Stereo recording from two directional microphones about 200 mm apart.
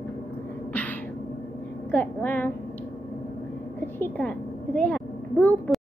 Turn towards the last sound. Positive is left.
turn(degrees=5)  # may be behind; listen again after turning